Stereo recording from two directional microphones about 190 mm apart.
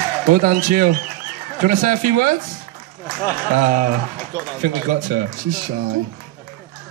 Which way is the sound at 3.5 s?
45° right (ahead or behind).